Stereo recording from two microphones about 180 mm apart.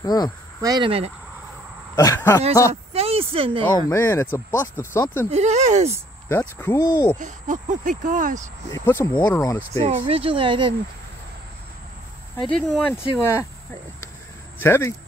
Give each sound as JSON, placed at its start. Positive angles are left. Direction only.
{"t": 0.0, "sound": "speech", "side_deg": 20}
{"t": 0.6, "sound": "speech", "side_deg": -20}
{"t": 2.0, "sound": "speech", "side_deg": 15}
{"t": 2.7, "sound": "speech", "side_deg": -35}
{"t": 3.6, "sound": "speech", "side_deg": 15}
{"t": 5.3, "sound": "speech", "side_deg": -40}
{"t": 6.2, "sound": "speech", "side_deg": 15}
{"t": 7.2, "sound": "speech", "side_deg": -45}
{"t": 8.7, "sound": "speech", "side_deg": 15}
{"t": 9.8, "sound": "speech", "side_deg": -30}
{"t": 12.4, "sound": "speech", "side_deg": 5}
{"t": 14.6, "sound": "speech", "side_deg": 15}